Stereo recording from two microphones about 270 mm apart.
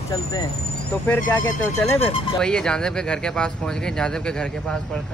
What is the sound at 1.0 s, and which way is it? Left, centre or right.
Speech, centre.